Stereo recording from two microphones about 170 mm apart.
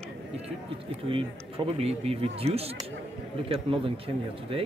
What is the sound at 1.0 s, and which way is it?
Speech, 30° right (ahead or behind).